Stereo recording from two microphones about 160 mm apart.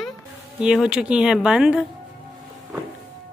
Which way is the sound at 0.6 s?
5° right (ahead or behind).